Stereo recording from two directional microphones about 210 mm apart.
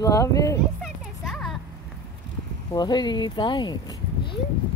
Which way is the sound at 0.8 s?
Centre (ahead or behind).